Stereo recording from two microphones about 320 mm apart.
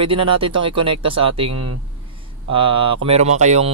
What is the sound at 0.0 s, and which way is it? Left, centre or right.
Speech, centre.